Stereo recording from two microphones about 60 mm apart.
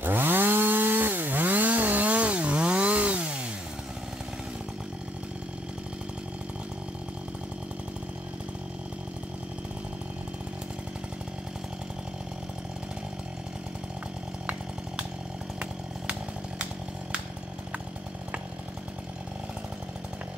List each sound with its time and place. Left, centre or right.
0.0 s chainsaw: right
15.6 s chainsaw: centre